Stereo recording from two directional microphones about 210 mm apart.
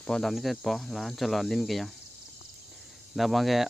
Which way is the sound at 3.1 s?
Centre (ahead or behind).